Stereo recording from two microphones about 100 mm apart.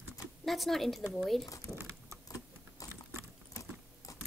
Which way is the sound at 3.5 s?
35° left (ahead or behind).